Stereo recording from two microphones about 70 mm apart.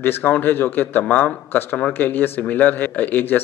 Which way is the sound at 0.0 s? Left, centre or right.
Left.